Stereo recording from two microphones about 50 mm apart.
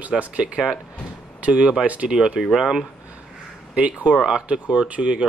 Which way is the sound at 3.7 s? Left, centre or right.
Right.